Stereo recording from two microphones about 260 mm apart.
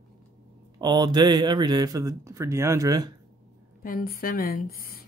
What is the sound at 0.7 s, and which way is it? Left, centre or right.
Speech, centre.